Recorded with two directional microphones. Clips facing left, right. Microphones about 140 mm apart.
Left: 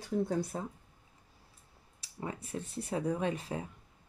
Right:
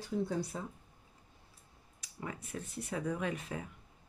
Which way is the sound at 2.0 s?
30° left (ahead or behind).